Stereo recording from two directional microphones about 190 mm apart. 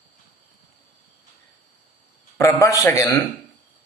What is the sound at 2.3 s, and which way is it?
Speech, 15° left (ahead or behind).